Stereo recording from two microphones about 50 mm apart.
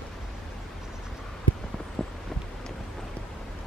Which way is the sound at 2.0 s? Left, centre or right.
Left.